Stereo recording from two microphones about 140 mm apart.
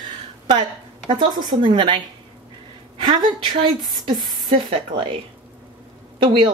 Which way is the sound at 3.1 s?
35° right (ahead or behind).